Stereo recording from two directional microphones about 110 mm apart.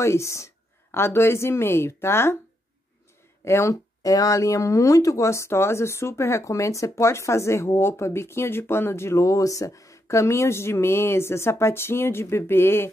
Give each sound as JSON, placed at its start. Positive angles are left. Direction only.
{"t": 0.0, "sound": "speech", "side_deg": 25}
{"t": 3.4, "sound": "speech", "side_deg": 25}